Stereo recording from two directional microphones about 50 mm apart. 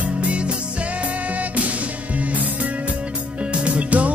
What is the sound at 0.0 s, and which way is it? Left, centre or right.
Music, right.